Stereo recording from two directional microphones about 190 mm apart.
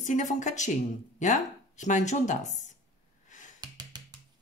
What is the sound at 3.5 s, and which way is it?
Music, 20° right (ahead or behind).